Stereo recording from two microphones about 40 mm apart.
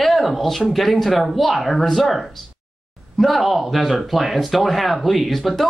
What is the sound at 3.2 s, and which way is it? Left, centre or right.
Speech, centre.